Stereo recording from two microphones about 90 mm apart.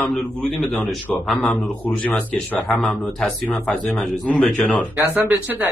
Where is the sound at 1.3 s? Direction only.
15° left (ahead or behind).